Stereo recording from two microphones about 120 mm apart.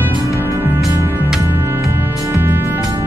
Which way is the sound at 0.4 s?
20° right (ahead or behind).